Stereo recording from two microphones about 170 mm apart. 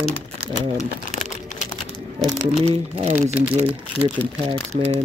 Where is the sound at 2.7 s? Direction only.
40° right (ahead or behind).